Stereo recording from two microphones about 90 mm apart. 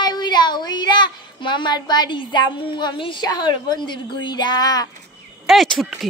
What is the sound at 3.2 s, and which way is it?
A woman's voice, 50° left (ahead or behind).